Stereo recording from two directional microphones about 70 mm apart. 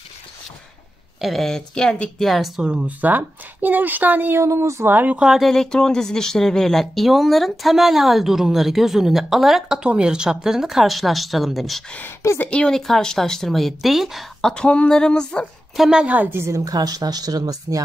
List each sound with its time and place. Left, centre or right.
1.2 s speech: centre
2.6 s speech: centre
3.0 s speech: right
4.4 s speech: right
4.9 s speech: right
5.4 s speech: centre
12.4 s speech: centre
14.4 s speech: centre
15.7 s a woman's voice: centre
16.0 s speech: centre
16.3 s a woman's voice: right